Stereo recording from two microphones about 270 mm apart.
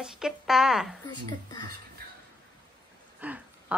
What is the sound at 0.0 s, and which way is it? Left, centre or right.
Speech, centre.